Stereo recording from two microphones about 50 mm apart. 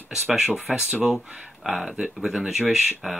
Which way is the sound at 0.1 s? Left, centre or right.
Centre.